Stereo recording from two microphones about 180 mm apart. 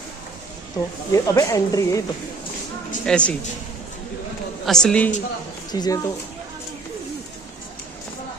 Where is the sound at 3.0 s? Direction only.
5° left (ahead or behind).